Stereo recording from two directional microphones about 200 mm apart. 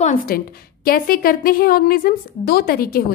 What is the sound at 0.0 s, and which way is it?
A woman's voice, 40° left (ahead or behind).